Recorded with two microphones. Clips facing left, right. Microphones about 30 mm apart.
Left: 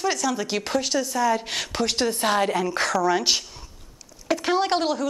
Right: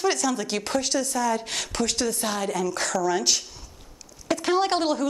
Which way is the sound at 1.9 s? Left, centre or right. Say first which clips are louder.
Left 5 dB; left.